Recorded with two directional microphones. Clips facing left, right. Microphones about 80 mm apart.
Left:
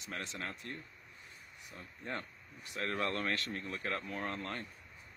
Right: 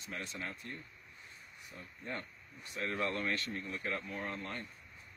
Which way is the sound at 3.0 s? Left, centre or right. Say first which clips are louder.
Right 1 dB; left.